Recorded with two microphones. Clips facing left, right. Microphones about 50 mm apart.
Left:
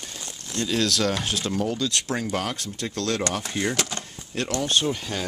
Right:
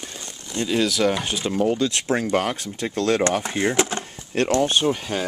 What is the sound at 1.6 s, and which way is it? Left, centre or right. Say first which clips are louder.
Speech: right 5 dB; right.